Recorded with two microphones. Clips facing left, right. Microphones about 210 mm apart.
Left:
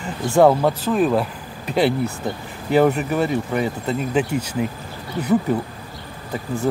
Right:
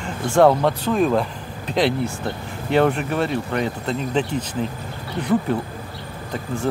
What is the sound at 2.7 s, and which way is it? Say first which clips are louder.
Speech: left 2 dB; 5° left (ahead or behind).